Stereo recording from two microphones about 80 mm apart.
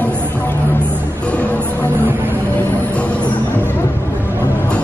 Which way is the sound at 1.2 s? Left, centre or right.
Centre.